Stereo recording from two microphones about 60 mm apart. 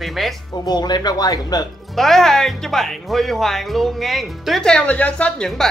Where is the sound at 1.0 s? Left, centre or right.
Left.